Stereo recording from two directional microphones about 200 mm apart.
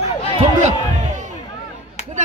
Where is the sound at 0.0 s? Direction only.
30° left (ahead or behind).